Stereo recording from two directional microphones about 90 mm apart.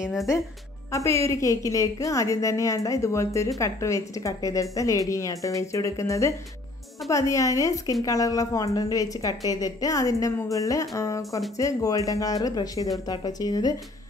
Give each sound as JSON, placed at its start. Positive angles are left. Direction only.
{"t": 0.0, "sound": "speech", "side_deg": -5}
{"t": 0.9, "sound": "a woman's voice", "side_deg": 35}